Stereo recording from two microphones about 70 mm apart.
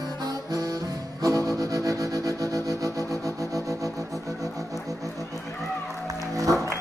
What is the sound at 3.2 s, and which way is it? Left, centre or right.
Music, right.